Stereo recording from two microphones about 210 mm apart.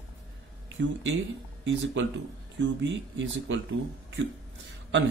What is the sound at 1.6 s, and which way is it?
Speech, 60° right (ahead or behind).